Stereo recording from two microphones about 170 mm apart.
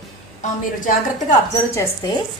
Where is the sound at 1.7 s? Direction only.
15° left (ahead or behind).